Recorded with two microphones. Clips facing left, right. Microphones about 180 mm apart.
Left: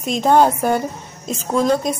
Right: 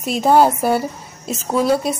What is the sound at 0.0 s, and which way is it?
A woman's voice, 5° right (ahead or behind).